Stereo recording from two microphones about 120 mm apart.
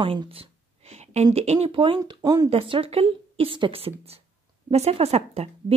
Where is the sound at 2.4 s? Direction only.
50° right (ahead or behind).